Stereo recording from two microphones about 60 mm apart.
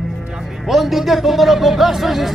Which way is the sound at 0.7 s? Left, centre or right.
Centre.